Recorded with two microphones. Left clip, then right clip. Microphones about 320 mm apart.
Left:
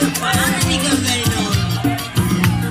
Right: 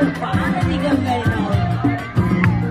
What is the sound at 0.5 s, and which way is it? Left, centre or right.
Music, right.